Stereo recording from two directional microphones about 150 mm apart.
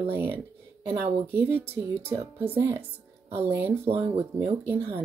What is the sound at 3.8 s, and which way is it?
Speech, 40° right (ahead or behind).